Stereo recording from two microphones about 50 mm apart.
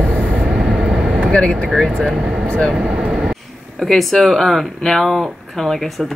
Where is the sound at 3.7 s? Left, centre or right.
Centre.